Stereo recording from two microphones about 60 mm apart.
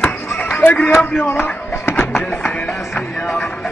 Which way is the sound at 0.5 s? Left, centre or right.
Left.